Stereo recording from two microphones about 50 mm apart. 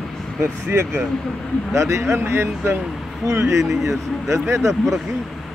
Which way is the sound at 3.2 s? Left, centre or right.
Right.